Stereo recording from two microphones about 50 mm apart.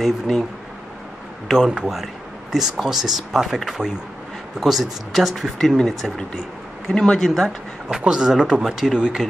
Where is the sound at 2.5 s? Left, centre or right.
Centre.